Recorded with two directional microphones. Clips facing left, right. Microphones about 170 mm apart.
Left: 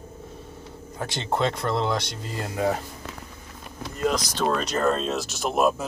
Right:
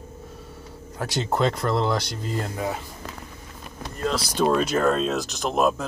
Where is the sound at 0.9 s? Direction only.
Centre (ahead or behind).